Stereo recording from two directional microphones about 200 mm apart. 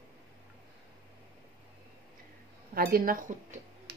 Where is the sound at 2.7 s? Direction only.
50° right (ahead or behind).